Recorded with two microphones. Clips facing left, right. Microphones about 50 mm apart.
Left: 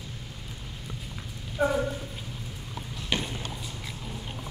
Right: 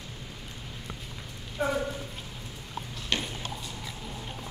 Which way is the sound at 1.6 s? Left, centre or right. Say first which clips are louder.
Left 3 dB; centre.